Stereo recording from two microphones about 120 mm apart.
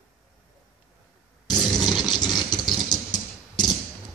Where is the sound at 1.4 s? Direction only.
Centre (ahead or behind).